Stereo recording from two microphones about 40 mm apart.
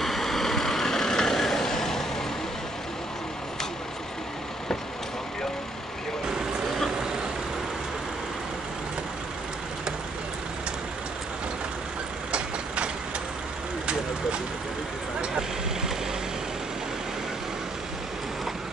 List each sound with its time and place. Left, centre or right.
0.0 s vehicle: centre
12.3 s vehicle: right